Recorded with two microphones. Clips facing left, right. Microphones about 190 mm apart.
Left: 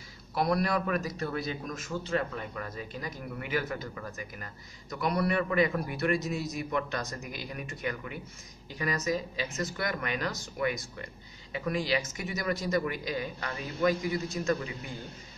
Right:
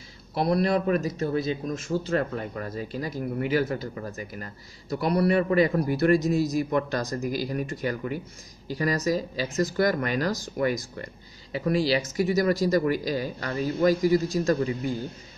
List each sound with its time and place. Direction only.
0.3 s a man's voice: 25° right (ahead or behind)
2.1 s speech: 40° right (ahead or behind)